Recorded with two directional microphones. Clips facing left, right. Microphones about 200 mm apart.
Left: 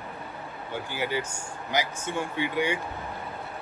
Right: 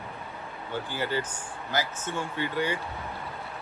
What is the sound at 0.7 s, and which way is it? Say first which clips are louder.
Speech: even; 10° left (ahead or behind).